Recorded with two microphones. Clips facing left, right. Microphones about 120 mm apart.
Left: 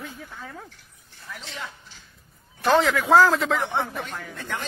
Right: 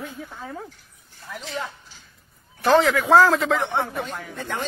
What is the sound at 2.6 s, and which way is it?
A man's voice, centre (ahead or behind).